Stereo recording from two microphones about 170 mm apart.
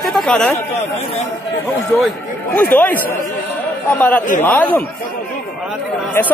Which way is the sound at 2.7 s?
10° left (ahead or behind).